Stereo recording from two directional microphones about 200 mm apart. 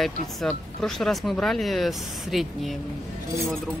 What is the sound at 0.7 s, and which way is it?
Speech, centre (ahead or behind).